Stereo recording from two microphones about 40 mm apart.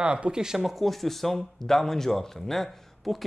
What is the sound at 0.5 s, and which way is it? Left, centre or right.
Speech, centre.